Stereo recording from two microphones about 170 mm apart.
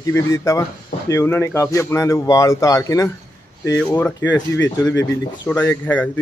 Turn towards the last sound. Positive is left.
turn(degrees=10)  # may be behind; listen again after turning